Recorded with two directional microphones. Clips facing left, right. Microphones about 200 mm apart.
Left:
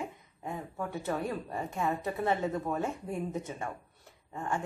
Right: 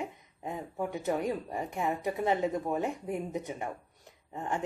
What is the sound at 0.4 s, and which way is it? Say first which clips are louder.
A woman's voice: right 2 dB; 20° right (ahead or behind).